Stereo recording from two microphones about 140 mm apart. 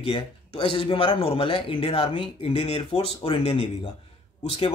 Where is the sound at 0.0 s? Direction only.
40° left (ahead or behind).